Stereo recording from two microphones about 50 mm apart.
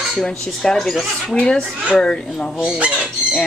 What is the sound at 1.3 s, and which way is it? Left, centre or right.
Speech, centre.